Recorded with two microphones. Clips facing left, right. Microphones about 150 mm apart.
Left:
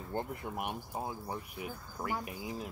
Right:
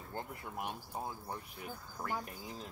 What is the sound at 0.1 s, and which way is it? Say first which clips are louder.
Speech: left 6 dB; 20° left (ahead or behind).